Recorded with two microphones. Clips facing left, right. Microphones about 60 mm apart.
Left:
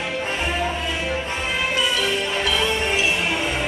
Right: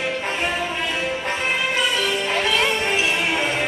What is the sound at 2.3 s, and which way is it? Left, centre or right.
Music, right.